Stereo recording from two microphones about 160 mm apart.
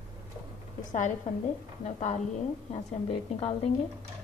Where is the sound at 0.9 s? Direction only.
50° left (ahead or behind).